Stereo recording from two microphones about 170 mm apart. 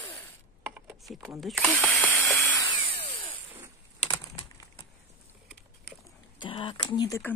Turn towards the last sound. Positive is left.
turn(degrees=15)  # may be behind; listen again after turning